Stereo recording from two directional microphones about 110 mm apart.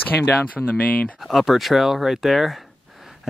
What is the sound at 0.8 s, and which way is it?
Speech, 15° left (ahead or behind).